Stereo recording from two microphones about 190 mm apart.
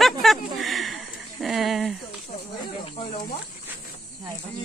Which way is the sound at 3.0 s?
35° left (ahead or behind).